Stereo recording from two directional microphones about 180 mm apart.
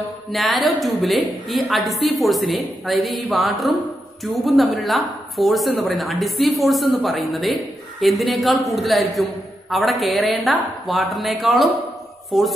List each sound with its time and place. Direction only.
0.3 s a woman's voice: centre (ahead or behind)